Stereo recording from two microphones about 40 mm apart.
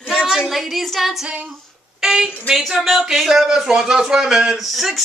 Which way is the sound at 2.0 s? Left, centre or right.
Centre.